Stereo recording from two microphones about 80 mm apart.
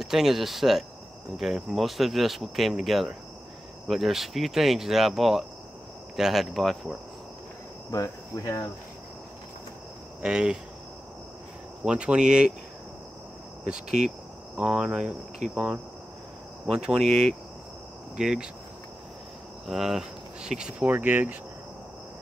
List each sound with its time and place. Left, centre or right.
0.0 s speech: centre
7.9 s cricket: left
10.2 s cricket: centre
11.8 s cricket: centre
14.6 s cricket: centre
16.6 s speech: centre
19.6 s speech: centre
20.8 s speech: right